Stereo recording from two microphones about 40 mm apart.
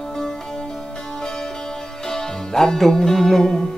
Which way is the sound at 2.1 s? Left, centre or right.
Centre.